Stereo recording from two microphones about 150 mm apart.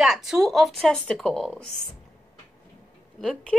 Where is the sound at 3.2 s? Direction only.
5° left (ahead or behind).